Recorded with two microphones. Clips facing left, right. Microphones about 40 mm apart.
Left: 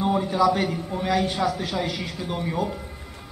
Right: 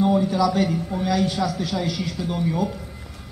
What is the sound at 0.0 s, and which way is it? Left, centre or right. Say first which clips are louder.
A man's voice: right 1 dB; centre.